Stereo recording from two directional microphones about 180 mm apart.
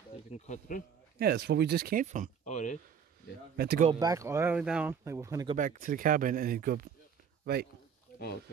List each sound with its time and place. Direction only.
0.5 s speech: 45° left (ahead or behind)
1.2 s speech: 65° right (ahead or behind); by 2.3 s 45° right (ahead or behind)
2.4 s speech: 45° left (ahead or behind)
3.5 s speech: 60° right (ahead or behind)
4.0 s speech: 20° right (ahead or behind)
5.6 s speech: 50° right (ahead or behind)
8.1 s a sound: 55° left (ahead or behind)